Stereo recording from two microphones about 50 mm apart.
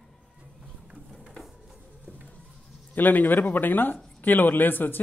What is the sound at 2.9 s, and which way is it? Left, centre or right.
A man's voice, left.